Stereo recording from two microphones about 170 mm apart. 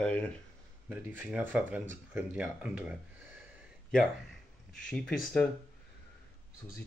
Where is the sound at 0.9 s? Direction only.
10° right (ahead or behind).